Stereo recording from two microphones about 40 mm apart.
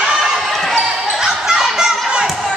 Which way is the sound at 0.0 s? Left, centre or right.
Centre.